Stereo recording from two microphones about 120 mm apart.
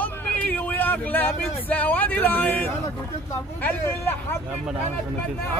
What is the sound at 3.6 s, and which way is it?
Speech, 15° left (ahead or behind).